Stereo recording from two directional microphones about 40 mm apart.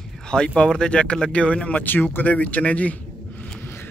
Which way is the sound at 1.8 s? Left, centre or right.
Left.